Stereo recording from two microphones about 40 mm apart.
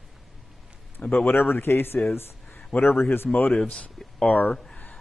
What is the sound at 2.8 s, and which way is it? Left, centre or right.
Speech, left.